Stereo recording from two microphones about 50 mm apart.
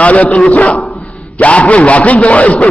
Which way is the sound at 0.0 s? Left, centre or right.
Left.